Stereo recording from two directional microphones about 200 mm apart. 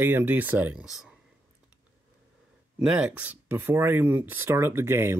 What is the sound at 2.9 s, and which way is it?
Speech, 5° right (ahead or behind).